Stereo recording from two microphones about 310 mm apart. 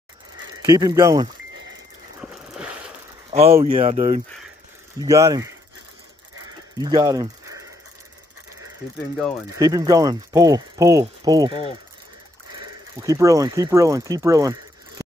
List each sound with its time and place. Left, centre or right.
0.7 s speech: centre
2.2 s a sound: centre
3.3 s speech: centre
5.0 s speech: centre
6.8 s speech: centre
9.6 s speech: centre
13.0 s speech: centre